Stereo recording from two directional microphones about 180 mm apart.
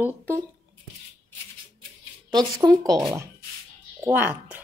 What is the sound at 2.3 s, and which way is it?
Speech, 20° right (ahead or behind).